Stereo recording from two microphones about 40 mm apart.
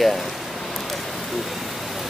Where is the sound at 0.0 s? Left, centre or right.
Centre.